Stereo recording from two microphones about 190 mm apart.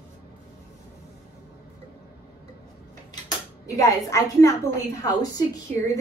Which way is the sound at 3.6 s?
15° left (ahead or behind).